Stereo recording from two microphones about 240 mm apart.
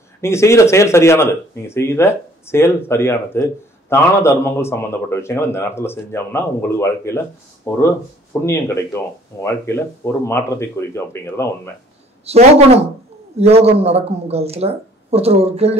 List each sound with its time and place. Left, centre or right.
0.2 s a man's voice: centre
12.3 s speech: right